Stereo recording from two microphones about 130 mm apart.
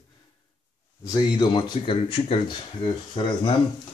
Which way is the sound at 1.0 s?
35° left (ahead or behind).